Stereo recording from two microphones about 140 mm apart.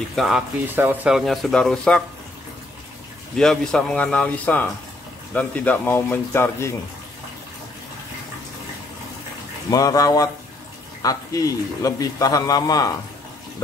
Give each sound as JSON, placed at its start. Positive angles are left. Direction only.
{"t": 0.1, "sound": "speech", "side_deg": 0}
{"t": 0.7, "sound": "speech", "side_deg": -15}
{"t": 1.1, "sound": "speech", "side_deg": 0}
{"t": 3.3, "sound": "speech", "side_deg": 5}
{"t": 9.7, "sound": "a man's voice", "side_deg": 25}